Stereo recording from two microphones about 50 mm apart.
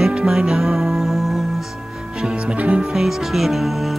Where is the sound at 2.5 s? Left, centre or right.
Right.